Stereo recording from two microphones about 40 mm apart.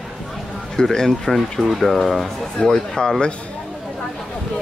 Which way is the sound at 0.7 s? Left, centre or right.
Centre.